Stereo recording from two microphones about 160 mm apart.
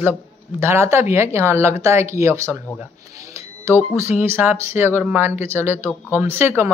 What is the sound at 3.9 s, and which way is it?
Speech, 15° right (ahead or behind).